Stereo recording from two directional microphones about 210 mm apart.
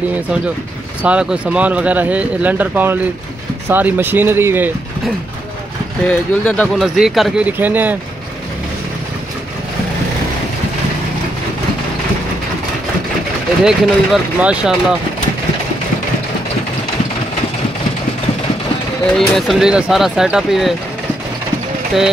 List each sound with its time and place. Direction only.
1.0 s speech: 5° right (ahead or behind)
6.0 s speech: 5° left (ahead or behind)
13.7 s speech: 5° right (ahead or behind)
19.1 s speech: centre (ahead or behind)